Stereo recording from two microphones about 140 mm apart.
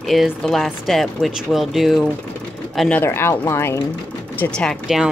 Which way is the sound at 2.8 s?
10° left (ahead or behind).